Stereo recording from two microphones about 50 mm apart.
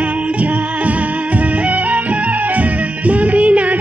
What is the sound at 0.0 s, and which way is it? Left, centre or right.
Music, right.